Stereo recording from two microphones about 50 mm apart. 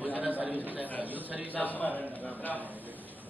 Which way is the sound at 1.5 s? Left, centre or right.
Left.